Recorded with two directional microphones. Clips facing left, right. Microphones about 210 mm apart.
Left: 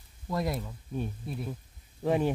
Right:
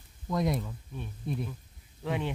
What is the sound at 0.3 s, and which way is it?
Speech, 5° left (ahead or behind).